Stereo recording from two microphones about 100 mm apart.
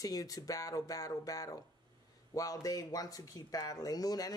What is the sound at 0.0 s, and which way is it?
A man's voice, 35° left (ahead or behind).